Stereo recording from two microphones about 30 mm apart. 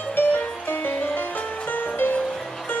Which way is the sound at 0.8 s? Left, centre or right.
Left.